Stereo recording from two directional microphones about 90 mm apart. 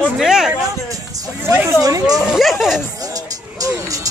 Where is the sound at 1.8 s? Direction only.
40° right (ahead or behind).